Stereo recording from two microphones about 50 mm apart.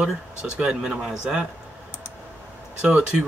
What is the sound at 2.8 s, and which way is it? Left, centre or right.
Speech, right.